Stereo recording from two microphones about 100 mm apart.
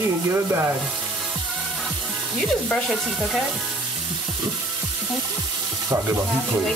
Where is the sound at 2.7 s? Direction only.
Centre (ahead or behind).